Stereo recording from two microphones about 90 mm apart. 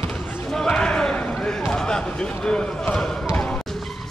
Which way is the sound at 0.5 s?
10° left (ahead or behind).